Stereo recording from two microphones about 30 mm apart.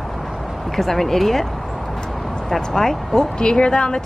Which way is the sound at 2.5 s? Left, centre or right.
Centre.